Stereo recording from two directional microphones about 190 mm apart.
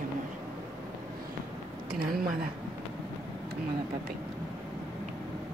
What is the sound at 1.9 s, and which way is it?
Speech, 50° right (ahead or behind).